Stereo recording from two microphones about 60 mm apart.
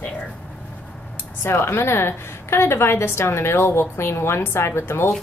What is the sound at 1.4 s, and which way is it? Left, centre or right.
A woman's voice, left.